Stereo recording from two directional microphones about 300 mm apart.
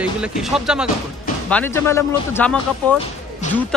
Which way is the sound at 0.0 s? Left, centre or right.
Centre.